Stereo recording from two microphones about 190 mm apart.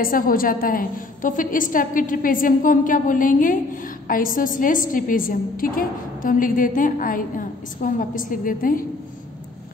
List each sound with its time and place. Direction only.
0.0 s a woman's voice: 45° left (ahead or behind)